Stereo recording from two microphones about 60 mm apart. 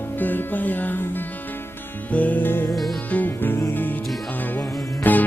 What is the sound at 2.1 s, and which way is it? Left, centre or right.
Music, left.